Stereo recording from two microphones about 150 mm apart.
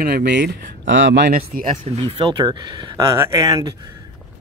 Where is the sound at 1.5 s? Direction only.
65° right (ahead or behind).